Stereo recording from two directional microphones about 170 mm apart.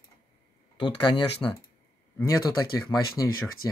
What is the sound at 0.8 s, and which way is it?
Speech, 25° left (ahead or behind).